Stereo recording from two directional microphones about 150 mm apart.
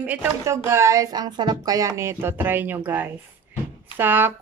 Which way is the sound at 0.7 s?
20° right (ahead or behind).